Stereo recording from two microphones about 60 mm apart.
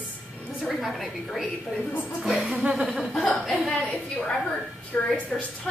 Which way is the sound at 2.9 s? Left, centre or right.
Centre.